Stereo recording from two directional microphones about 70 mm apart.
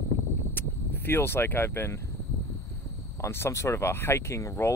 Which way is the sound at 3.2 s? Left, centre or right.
Left.